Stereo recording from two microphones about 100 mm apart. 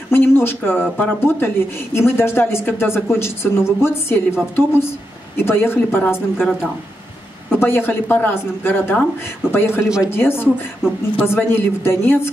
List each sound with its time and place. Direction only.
0.1 s a woman's voice: 20° left (ahead or behind)
7.5 s a woman's voice: 20° left (ahead or behind)